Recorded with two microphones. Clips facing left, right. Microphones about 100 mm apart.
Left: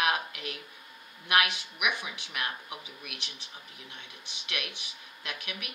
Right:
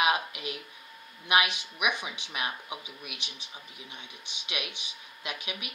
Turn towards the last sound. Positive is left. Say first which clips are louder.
# right 2 dB
turn(degrees=-15)  # may be behind; listen again after turning